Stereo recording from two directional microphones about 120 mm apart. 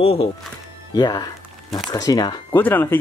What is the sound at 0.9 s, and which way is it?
Speech, 35° left (ahead or behind).